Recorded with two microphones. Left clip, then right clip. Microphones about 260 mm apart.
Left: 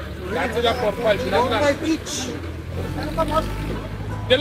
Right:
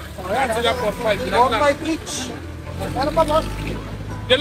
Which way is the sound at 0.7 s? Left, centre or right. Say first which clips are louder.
Even; right.